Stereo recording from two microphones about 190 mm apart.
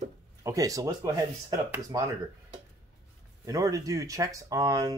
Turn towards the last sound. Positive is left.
turn(degrees=-20)  # may be behind; listen again after turning